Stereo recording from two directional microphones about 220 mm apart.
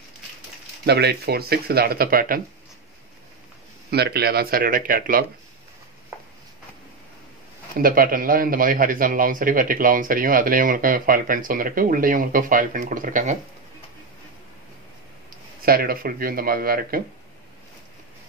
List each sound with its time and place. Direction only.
0.8 s speech: 50° right (ahead or behind)
3.9 s a man's voice: 45° right (ahead or behind)
6.1 s a sound: 10° right (ahead or behind)
7.8 s a man's voice: 40° right (ahead or behind)
15.6 s a man's voice: 45° right (ahead or behind)